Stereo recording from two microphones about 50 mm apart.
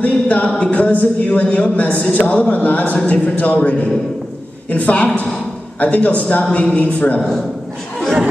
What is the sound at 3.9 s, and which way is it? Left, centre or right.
Speech, centre.